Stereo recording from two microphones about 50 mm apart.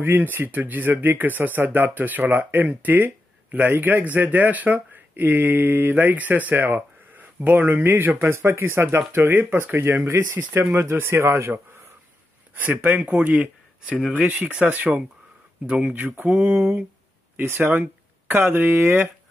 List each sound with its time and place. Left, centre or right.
0.0 s speech: right
10.0 s speech: right
12.5 s speech: right